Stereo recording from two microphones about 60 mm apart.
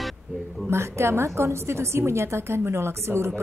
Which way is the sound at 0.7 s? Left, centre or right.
Right.